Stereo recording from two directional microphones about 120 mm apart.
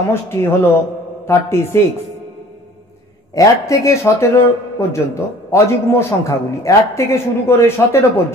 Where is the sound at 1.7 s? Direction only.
20° left (ahead or behind).